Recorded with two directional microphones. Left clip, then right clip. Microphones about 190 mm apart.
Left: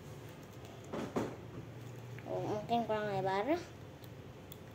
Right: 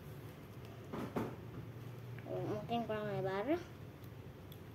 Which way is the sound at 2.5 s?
10° right (ahead or behind).